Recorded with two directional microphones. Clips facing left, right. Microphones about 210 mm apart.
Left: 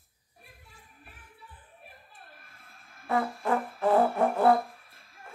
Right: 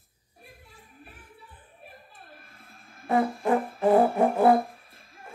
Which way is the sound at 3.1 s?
20° right (ahead or behind).